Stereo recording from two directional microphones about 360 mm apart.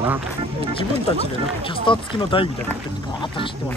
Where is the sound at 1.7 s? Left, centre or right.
Centre.